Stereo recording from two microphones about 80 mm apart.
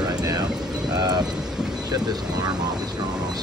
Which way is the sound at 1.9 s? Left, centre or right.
Right.